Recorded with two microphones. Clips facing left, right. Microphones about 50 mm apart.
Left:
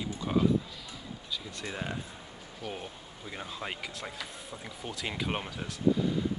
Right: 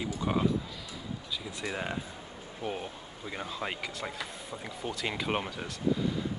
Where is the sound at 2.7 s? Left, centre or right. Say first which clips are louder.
Right 3 dB; centre.